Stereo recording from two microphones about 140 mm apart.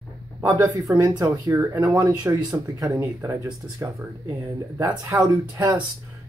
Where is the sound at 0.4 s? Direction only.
25° right (ahead or behind).